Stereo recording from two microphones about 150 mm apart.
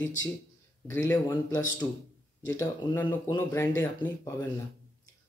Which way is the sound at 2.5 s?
10° left (ahead or behind).